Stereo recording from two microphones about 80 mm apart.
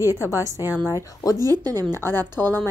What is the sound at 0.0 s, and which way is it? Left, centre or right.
Speech, right.